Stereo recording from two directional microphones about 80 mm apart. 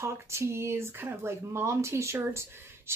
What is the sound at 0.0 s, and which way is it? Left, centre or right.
Speech, right.